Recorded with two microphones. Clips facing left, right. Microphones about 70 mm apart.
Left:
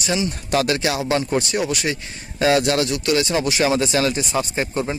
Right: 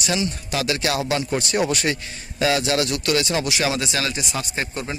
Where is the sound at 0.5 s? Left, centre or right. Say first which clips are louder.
Left 7 dB; left.